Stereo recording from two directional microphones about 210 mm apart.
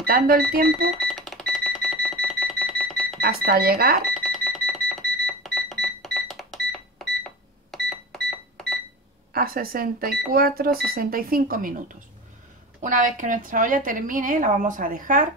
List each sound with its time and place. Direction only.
0.0 s speech: 45° right (ahead or behind)
0.7 s cash register: centre (ahead or behind)
3.2 s speech: 45° right (ahead or behind)
4.1 s a sound: centre (ahead or behind)
7.7 s cash register: centre (ahead or behind)
9.3 s a woman's voice: 45° right (ahead or behind)